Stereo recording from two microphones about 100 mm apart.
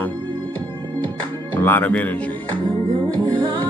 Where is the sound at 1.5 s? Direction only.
20° left (ahead or behind).